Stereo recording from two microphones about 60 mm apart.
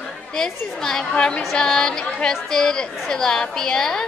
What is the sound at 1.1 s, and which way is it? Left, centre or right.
Speech, centre.